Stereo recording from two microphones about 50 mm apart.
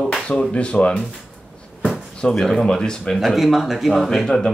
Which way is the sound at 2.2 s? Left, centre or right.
Centre.